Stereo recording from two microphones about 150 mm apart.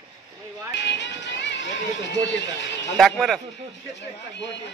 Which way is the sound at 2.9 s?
Centre (ahead or behind).